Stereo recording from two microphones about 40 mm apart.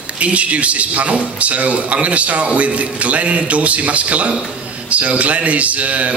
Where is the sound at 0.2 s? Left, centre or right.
Right.